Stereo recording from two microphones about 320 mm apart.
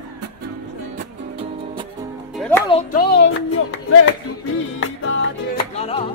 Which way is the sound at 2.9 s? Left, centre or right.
Left.